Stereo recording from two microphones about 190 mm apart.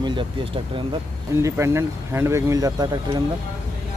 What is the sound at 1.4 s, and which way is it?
Speech, 15° right (ahead or behind).